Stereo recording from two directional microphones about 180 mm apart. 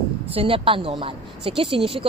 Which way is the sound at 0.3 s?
30° right (ahead or behind).